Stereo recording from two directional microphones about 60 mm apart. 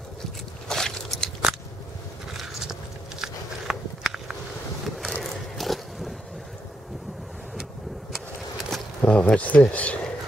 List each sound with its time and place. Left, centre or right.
0.7 s biting: centre
2.3 s biting: centre
4.8 s a sound: centre
8.1 s vehicle: centre
9.0 s speech: centre